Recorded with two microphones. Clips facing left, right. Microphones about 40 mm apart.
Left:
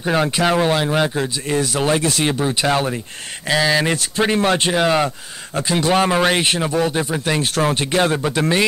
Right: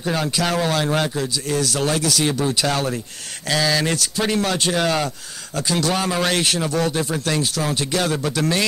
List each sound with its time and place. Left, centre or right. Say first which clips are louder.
0.0 s speech: left 4 dB; left
7.4 s speech: left 4 dB; left